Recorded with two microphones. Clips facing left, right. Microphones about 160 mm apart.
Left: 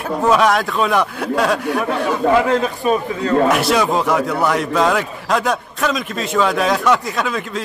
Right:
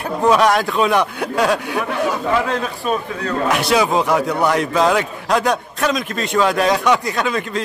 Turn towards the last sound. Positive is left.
turn(degrees=0)  # may be behind; listen again after turning